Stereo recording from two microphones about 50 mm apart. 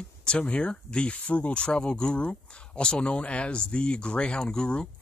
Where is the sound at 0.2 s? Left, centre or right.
Left.